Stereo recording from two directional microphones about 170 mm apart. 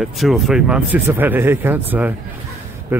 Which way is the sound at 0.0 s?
Centre (ahead or behind).